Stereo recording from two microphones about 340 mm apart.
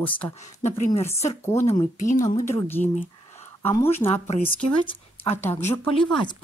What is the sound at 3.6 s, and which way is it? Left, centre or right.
Speech, centre.